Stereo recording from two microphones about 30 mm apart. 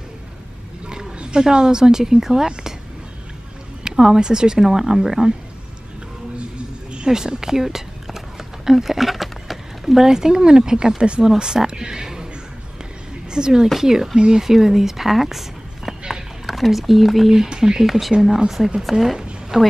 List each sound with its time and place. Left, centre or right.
0.8 s roaring cats: right
1.4 s a woman's voice: right
3.9 s a sound: centre
4.2 s a woman's voice: right
7.1 s speech: centre
8.6 s a sound: centre
10.0 s a woman's voice: right
13.3 s a woman's voice: right
14.1 s a woman's voice: right
14.4 s speech: centre
17.3 s a woman's voice: centre
18.8 s a woman's voice: centre